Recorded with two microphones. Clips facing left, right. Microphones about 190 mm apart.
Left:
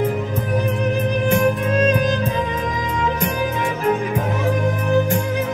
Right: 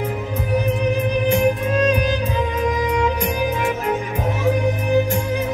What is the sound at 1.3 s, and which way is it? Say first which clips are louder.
Music: left 1 dB; 45° left (ahead or behind).